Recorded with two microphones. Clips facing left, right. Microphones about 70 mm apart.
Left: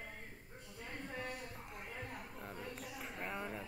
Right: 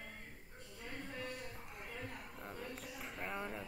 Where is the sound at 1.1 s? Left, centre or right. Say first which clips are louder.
Left 2 dB; left.